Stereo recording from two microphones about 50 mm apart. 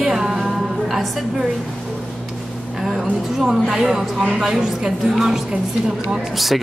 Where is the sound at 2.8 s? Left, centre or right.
Centre.